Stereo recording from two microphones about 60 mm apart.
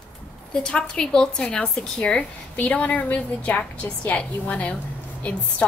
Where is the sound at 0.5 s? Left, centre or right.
Centre.